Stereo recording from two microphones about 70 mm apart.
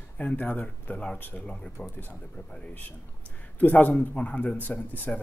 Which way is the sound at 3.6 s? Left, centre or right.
Left.